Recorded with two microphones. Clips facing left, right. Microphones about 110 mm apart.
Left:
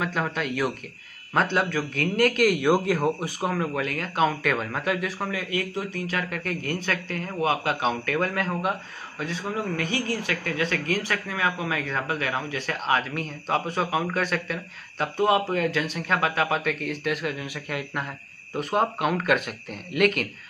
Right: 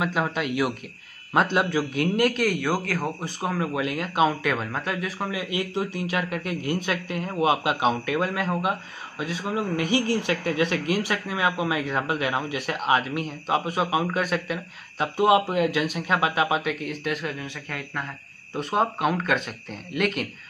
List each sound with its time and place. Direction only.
0.0 s speech: 10° right (ahead or behind)
2.1 s speech: centre (ahead or behind)
2.6 s speech: 20° left (ahead or behind)
3.5 s speech: 5° right (ahead or behind)